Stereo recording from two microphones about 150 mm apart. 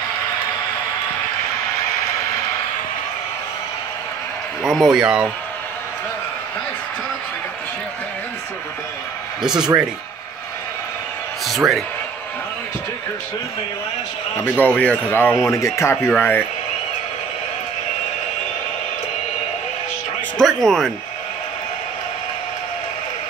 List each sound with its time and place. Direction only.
4.6 s speech: centre (ahead or behind)
9.4 s speech: 5° right (ahead or behind)
11.4 s a man's voice: centre (ahead or behind)
14.3 s a man's voice: 15° left (ahead or behind)
20.3 s speech: centre (ahead or behind)